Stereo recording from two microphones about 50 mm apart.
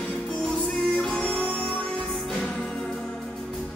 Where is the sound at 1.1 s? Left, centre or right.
Left.